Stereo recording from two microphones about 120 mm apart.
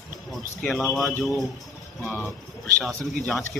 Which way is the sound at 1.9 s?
15° left (ahead or behind).